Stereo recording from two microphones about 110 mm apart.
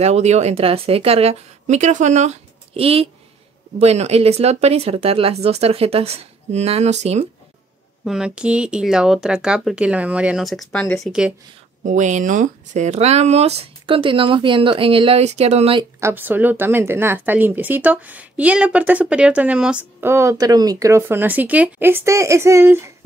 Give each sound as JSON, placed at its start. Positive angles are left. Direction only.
{"t": 0.0, "sound": "speech", "side_deg": -90}
{"t": 3.8, "sound": "speech", "side_deg": -75}
{"t": 8.0, "sound": "speech", "side_deg": -5}
{"t": 10.4, "sound": "speech", "side_deg": 0}
{"t": 11.1, "sound": "speech", "side_deg": -10}
{"t": 12.7, "sound": "speech", "side_deg": -90}
{"t": 16.0, "sound": "speech", "side_deg": -20}
{"t": 20.0, "sound": "speech", "side_deg": -25}